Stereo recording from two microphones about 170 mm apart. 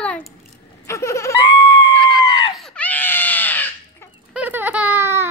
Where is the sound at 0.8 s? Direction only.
15° left (ahead or behind).